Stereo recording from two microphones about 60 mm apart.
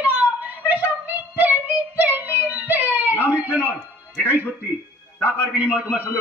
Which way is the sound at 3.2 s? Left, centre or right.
Right.